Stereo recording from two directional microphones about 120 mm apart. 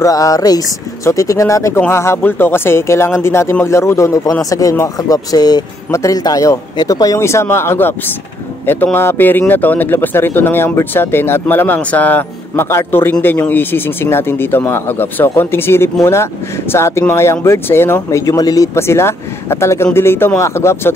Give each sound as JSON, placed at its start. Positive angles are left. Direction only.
{"t": 0.0, "sound": "speech", "side_deg": 30}